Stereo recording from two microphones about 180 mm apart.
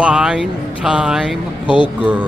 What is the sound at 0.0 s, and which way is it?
Speech, 5° right (ahead or behind).